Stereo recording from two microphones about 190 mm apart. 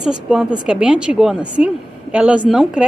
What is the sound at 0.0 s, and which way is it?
A woman's voice, 5° right (ahead or behind).